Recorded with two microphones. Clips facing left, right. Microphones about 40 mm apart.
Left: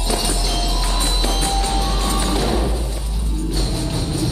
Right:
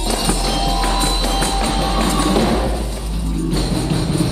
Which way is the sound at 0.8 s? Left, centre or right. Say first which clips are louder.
Right 4 dB; right.